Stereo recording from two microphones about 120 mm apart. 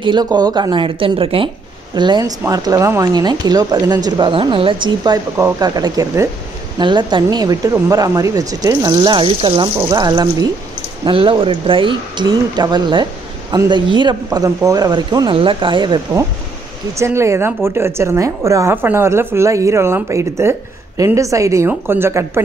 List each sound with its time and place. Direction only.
0.0 s a woman's voice: 40° right (ahead or behind)
2.0 s a woman's voice: 35° right (ahead or behind)
9.8 s speech: 30° right (ahead or behind)
11.1 s speech: 45° right (ahead or behind)
15.3 s a woman's voice: 45° right (ahead or behind)
16.9 s a woman's voice: 25° right (ahead or behind)